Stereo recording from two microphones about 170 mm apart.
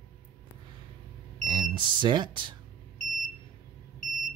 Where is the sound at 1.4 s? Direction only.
25° right (ahead or behind).